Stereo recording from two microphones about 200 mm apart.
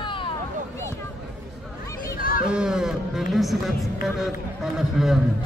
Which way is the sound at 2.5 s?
5° right (ahead or behind).